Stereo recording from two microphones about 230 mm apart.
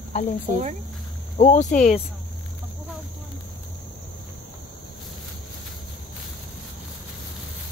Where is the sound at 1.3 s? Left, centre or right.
Left.